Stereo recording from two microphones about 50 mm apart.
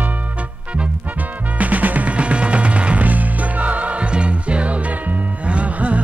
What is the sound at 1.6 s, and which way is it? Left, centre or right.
Music, right.